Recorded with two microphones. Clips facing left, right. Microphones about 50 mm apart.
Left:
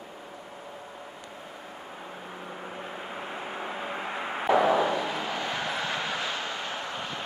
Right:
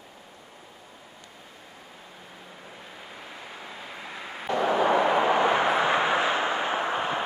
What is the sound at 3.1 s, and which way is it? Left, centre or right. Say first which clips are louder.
Vehicle: left 5 dB; left.